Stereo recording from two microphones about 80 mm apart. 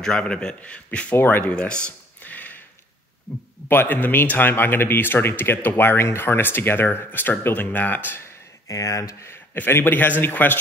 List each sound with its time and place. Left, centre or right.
0.0 s a man's voice: centre
1.5 s a sound: centre
3.6 s a man's voice: left
8.6 s a man's voice: left